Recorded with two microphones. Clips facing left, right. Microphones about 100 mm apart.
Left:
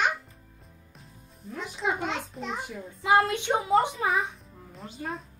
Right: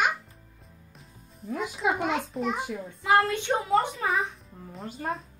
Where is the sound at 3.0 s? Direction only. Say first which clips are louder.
Even; 20° left (ahead or behind).